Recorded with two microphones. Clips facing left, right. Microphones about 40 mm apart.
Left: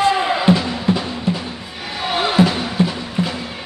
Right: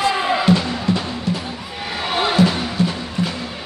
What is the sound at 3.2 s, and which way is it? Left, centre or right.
Music, left.